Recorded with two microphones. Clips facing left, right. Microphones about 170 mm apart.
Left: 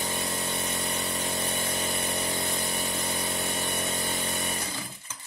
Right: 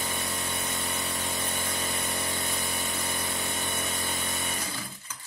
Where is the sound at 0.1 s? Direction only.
20° left (ahead or behind).